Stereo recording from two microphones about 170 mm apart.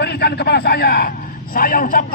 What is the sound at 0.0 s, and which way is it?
A man's voice, 75° left (ahead or behind).